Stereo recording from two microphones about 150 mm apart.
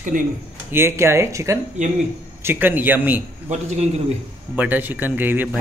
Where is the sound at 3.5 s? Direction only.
50° right (ahead or behind).